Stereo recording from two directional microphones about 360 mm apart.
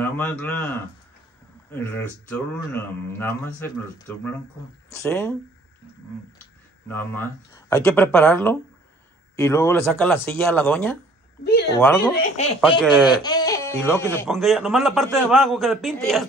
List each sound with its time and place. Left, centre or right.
0.0 s speech: centre
6.9 s speech: centre
12.2 s speech: centre
12.8 s speech: centre
13.2 s speech: centre